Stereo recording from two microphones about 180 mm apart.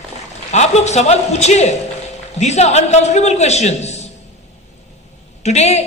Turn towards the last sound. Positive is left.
turn(degrees=40)  # may be behind; listen again after turning